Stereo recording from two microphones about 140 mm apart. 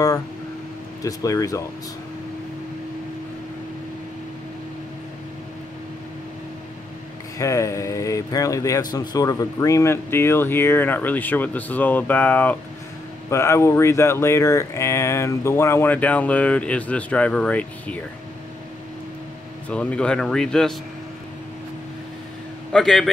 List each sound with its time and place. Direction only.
1.0 s speech: 25° left (ahead or behind)
7.3 s a man's voice: 20° left (ahead or behind)
19.7 s a man's voice: 10° left (ahead or behind)
22.7 s a man's voice: centre (ahead or behind)